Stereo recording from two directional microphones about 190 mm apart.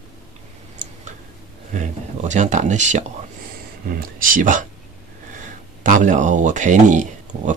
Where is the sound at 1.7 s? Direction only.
40° right (ahead or behind).